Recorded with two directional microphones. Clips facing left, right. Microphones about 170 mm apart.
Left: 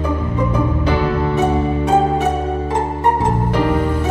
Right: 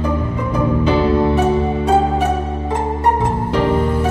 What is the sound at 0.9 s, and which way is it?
Music, 15° right (ahead or behind).